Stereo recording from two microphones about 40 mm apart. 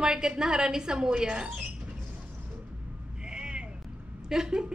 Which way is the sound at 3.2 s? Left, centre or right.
Right.